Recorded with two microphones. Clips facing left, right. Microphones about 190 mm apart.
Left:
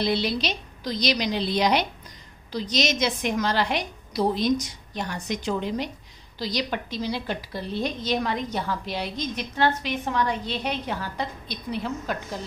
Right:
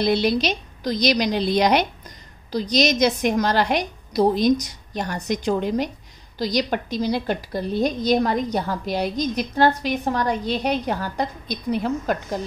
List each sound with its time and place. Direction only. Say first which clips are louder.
0.0 s a woman's voice: right 5 dB; 45° right (ahead or behind)